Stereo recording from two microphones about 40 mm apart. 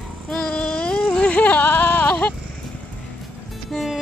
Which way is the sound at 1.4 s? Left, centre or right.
Left.